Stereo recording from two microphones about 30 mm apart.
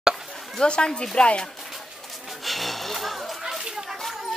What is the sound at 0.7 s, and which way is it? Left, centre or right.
Speech, left.